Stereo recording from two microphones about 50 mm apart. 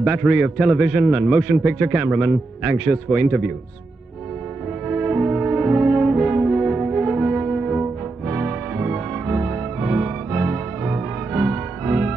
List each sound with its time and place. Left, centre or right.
0.0 s a man's voice: right
1.4 s a man's voice: centre
1.7 s a man's voice: right
4.8 s brass instrument: centre
8.3 s music: centre